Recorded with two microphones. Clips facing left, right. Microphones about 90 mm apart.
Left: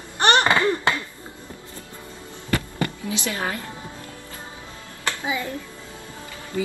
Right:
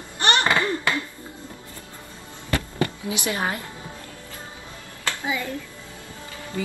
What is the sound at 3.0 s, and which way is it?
Speech, 20° right (ahead or behind).